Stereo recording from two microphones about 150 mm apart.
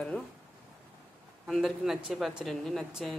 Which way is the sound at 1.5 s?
Centre (ahead or behind).